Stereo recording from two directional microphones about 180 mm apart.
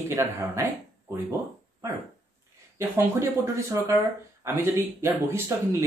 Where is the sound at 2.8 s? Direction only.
15° right (ahead or behind).